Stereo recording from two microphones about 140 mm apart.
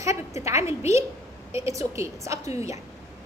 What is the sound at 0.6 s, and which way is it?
Speech, 50° left (ahead or behind).